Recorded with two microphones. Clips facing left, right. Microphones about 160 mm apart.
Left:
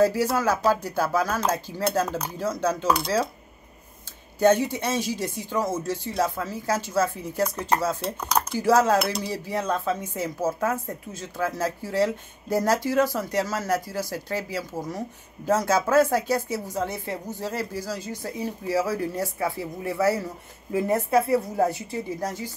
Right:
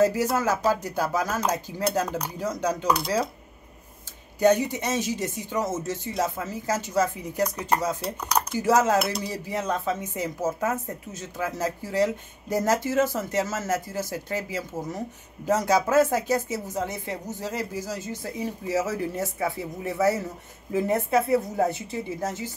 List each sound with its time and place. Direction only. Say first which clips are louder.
0.0 s speech: left 1 dB; 20° right (ahead or behind)
4.4 s speech: left 1 dB; 15° right (ahead or behind)
20.9 s a woman's voice: left 1 dB; 40° left (ahead or behind)
22.2 s speech: even; 20° right (ahead or behind)